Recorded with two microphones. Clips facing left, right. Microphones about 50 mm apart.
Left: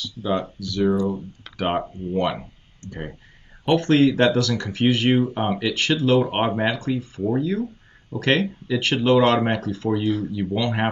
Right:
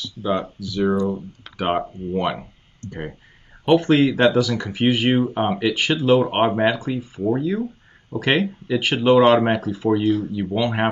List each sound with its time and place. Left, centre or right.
0.0 s speech: centre
2.8 s speech: left
3.6 s speech: centre